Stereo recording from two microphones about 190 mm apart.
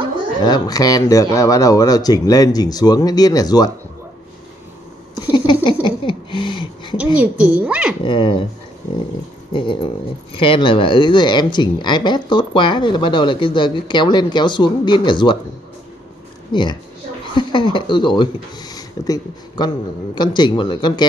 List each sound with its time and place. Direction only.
0.4 s speech: 20° left (ahead or behind)
5.5 s a sound: 25° left (ahead or behind)
7.2 s speech: 5° right (ahead or behind)
7.6 s dog: 5° right (ahead or behind)
8.0 s speech: 25° left (ahead or behind)
9.5 s speech: 25° left (ahead or behind)
16.5 s speech: 25° left (ahead or behind)